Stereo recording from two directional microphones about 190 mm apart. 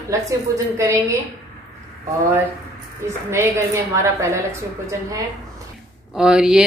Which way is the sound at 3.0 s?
15° right (ahead or behind).